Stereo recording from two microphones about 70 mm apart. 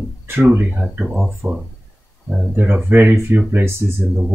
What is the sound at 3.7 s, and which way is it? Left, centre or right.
Speech, right.